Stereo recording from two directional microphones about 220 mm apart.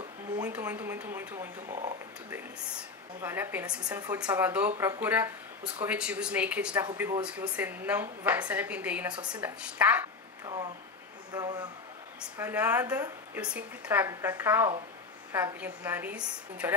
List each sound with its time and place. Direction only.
0.4 s a woman's voice: 5° right (ahead or behind)
10.4 s a sound: 20° right (ahead or behind)
12.4 s a woman's voice: 10° right (ahead or behind)